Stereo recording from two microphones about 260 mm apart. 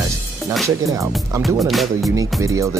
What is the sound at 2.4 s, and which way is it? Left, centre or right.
Speech, centre.